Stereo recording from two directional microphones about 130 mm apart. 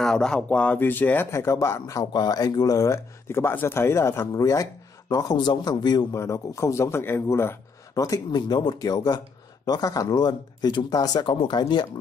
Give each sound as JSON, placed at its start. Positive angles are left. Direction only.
{"t": 0.0, "sound": "speech", "side_deg": 5}